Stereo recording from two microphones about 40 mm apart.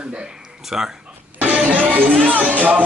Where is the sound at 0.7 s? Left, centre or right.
Centre.